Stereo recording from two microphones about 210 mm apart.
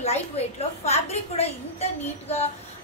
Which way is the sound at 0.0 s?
30° left (ahead or behind).